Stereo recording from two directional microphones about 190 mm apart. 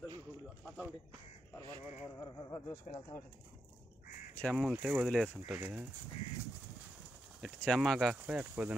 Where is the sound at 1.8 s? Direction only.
35° left (ahead or behind).